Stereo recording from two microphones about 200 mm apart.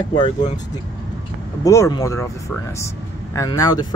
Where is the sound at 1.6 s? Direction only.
15° left (ahead or behind).